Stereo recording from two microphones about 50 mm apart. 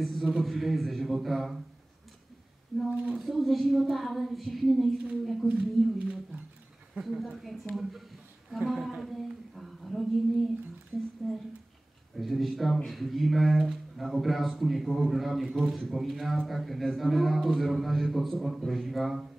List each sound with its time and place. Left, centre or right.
0.0 s a man's voice: centre
2.7 s a man's voice: centre
5.5 s speech: right
7.0 s a man's voice: centre
11.2 s a man's voice: centre